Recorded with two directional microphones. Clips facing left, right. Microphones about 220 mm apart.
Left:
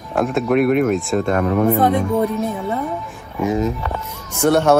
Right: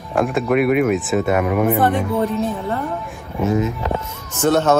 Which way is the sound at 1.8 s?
10° left (ahead or behind).